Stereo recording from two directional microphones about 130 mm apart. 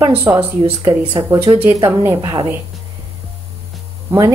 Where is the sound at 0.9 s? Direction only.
25° right (ahead or behind).